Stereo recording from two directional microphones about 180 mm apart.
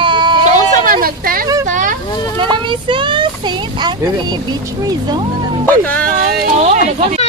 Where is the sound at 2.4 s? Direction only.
25° right (ahead or behind).